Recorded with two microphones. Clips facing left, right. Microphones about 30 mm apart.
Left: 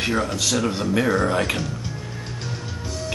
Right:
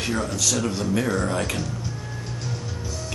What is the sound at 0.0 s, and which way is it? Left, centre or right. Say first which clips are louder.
Speech: left 2 dB; left.